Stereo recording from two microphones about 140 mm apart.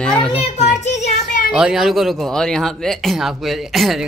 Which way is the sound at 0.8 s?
55° left (ahead or behind).